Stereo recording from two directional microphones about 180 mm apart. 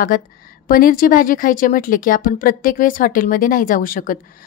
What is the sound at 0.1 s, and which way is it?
Speech, 50° left (ahead or behind).